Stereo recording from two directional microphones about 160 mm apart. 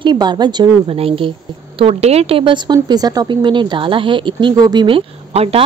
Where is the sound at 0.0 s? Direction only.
25° right (ahead or behind).